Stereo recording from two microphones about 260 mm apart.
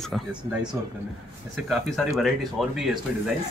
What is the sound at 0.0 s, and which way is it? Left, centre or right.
Speech, centre.